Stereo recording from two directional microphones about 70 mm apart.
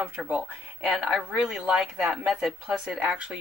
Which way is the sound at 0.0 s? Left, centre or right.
Centre.